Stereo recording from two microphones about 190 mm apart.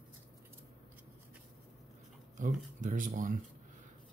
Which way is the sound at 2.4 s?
40° right (ahead or behind).